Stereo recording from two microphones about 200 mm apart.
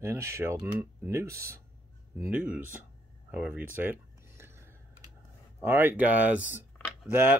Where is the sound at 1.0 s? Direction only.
15° right (ahead or behind).